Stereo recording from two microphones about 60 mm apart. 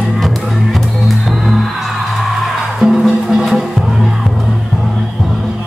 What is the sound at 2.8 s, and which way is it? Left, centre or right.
Music, centre.